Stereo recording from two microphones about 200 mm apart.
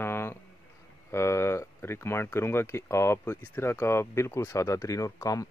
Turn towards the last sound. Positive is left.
turn(degrees=15)  # may be behind; listen again after turning